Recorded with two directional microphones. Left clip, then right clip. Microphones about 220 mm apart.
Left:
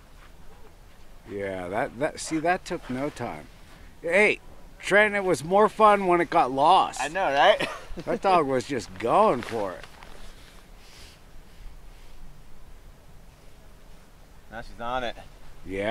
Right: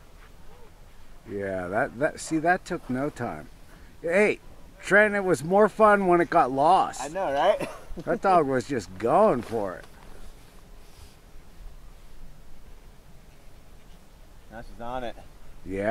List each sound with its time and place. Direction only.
1.3 s speech: 10° right (ahead or behind)
7.0 s speech: 10° left (ahead or behind)
8.2 s speech: 10° right (ahead or behind)
14.5 s speech: 15° left (ahead or behind)